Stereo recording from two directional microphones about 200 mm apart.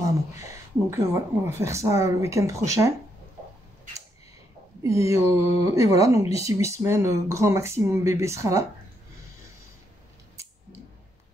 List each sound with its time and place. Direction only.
0.0 s speech: 15° right (ahead or behind)
4.8 s speech: 15° right (ahead or behind)